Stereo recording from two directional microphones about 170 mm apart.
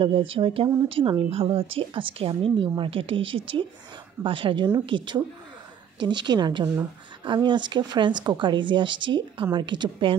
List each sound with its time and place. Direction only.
0.0 s speech: 30° right (ahead or behind)